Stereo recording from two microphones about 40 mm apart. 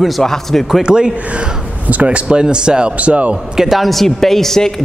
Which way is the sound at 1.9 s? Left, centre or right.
Right.